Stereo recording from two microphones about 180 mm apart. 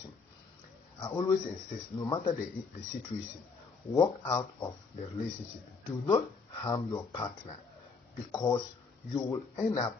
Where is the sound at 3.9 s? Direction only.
20° left (ahead or behind).